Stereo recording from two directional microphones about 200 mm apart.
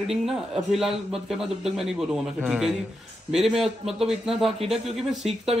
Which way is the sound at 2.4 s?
5° right (ahead or behind).